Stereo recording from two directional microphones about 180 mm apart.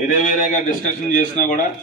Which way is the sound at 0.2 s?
45° left (ahead or behind).